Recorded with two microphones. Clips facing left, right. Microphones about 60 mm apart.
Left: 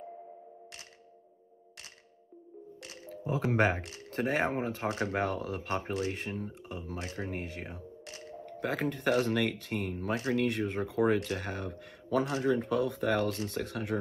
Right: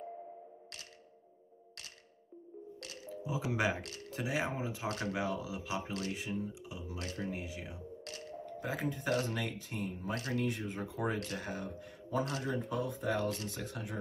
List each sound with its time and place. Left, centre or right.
3.3 s speech: left
3.8 s speech: left
4.1 s speech: left
7.0 s speech: left
7.2 s speech: left